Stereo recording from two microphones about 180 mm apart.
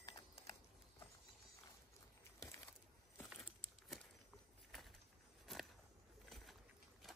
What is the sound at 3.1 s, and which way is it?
Crumpling, centre (ahead or behind).